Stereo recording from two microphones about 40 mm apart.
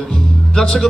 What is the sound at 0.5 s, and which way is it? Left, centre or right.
Speech, left.